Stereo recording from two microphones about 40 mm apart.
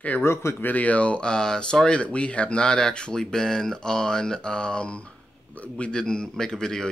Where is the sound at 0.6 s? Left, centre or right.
Left.